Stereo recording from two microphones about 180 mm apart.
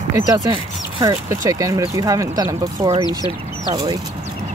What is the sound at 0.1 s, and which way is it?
Speech, 20° right (ahead or behind).